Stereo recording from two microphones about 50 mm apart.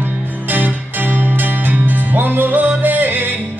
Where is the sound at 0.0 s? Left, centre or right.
Right.